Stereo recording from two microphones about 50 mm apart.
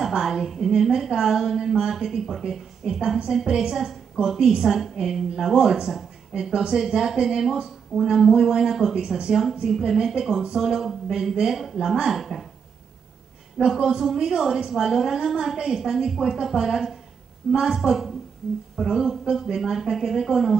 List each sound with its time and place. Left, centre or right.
0.0 s a woman's voice: centre
10.4 s a woman's voice: centre
13.7 s a woman's voice: centre